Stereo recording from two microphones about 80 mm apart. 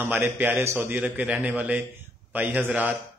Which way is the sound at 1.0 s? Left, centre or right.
Centre.